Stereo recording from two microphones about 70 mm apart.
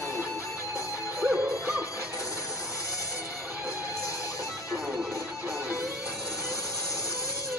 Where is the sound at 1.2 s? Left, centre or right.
Centre.